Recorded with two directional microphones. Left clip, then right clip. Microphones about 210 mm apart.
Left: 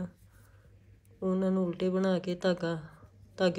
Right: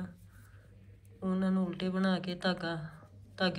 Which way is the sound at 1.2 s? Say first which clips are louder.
Left 5 dB; 35° left (ahead or behind).